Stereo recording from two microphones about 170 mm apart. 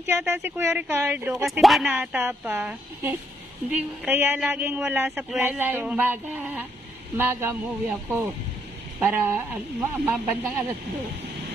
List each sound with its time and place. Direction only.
0.1 s speech: 15° right (ahead or behind)
1.3 s speech: centre (ahead or behind)